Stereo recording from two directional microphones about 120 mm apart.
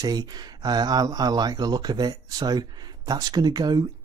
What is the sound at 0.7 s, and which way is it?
Speech, 35° right (ahead or behind).